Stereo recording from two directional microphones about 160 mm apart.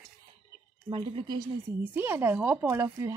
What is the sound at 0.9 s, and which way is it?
Speech, 30° right (ahead or behind).